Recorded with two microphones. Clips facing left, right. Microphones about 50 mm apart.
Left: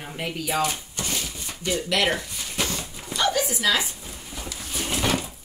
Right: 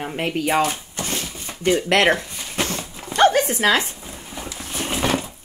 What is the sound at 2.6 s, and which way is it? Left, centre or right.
Dog, right.